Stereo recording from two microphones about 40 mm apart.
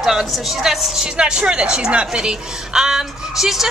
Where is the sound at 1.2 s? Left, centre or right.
Right.